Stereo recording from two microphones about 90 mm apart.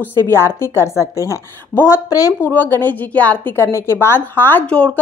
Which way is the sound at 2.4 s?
20° left (ahead or behind).